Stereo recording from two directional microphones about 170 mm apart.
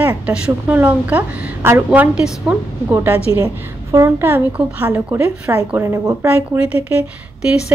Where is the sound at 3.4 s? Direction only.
20° right (ahead or behind).